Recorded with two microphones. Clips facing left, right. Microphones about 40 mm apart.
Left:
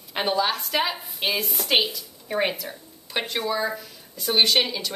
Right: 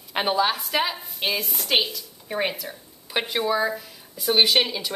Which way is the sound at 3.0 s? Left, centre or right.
Centre.